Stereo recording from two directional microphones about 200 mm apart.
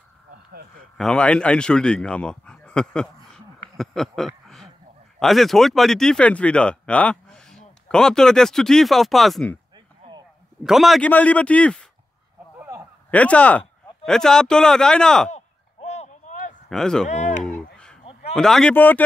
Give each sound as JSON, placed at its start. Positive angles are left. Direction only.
{"t": 0.5, "sound": "speech", "side_deg": -50}
{"t": 0.9, "sound": "speech", "side_deg": 5}
{"t": 3.7, "sound": "a sound", "side_deg": 0}
{"t": 5.2, "sound": "speech", "side_deg": 0}
{"t": 10.6, "sound": "speech", "side_deg": 0}
{"t": 12.5, "sound": "a sound", "side_deg": -15}
{"t": 13.1, "sound": "speech", "side_deg": 5}
{"t": 15.3, "sound": "chop", "side_deg": 35}
{"t": 16.6, "sound": "speech", "side_deg": 5}
{"t": 17.1, "sound": "a sound", "side_deg": 35}
{"t": 18.3, "sound": "speech", "side_deg": 5}